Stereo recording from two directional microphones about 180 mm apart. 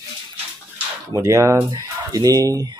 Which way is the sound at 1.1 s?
20° right (ahead or behind).